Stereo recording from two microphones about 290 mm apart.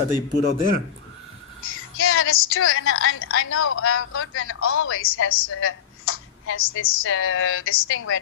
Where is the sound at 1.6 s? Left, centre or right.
Left.